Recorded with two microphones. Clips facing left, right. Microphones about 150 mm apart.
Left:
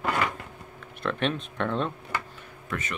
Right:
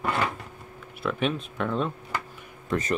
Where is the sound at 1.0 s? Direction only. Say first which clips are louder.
Right 1 dB; 5° right (ahead or behind).